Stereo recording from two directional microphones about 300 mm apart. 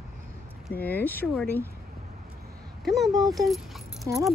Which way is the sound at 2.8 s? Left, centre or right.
Centre.